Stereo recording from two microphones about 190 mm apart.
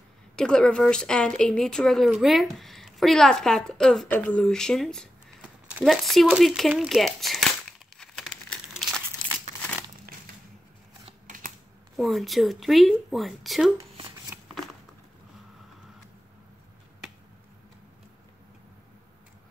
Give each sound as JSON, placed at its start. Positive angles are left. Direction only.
{"t": 0.4, "sound": "a woman's voice", "side_deg": 5}
{"t": 8.0, "sound": "crumpling", "side_deg": 5}
{"t": 11.1, "sound": "scissors", "side_deg": -40}
{"t": 12.0, "sound": "a woman's voice", "side_deg": 0}
{"t": 14.3, "sound": "shuffling cards", "side_deg": -10}